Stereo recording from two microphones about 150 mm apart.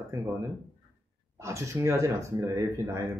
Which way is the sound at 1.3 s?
20° right (ahead or behind).